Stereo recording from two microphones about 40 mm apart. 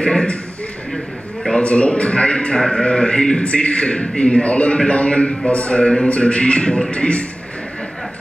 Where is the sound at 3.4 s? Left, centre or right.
Left.